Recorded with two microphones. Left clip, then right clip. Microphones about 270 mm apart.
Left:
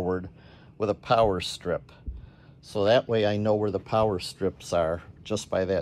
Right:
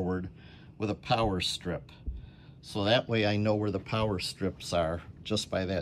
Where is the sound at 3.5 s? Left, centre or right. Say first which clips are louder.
Left 5 dB; centre.